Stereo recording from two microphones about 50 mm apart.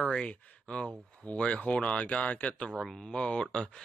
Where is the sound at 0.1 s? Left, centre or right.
Left.